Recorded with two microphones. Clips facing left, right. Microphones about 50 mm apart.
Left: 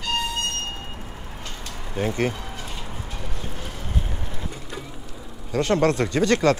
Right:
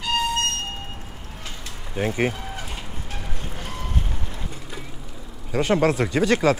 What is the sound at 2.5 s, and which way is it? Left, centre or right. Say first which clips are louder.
Fowl: right 1 dB; right.